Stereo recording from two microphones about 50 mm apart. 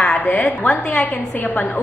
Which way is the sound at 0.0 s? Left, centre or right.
Left.